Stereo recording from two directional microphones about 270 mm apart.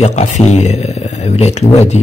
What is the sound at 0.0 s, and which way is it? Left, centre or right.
Speech, left.